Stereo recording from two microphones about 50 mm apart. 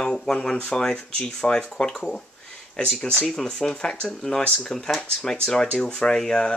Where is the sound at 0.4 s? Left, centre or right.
Centre.